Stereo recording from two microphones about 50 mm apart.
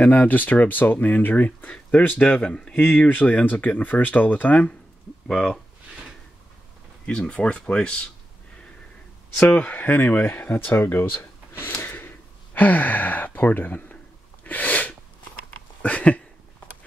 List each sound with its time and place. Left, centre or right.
0.0 s speech: left
3.1 s speech: left
5.3 s speech: centre
7.1 s speech: centre
9.5 s speech: left
11.8 s a sound: left
12.5 s speech: left
14.4 s sneeze: left
15.8 s a sound: left